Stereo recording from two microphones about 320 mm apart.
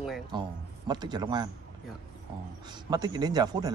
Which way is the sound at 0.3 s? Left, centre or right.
Centre.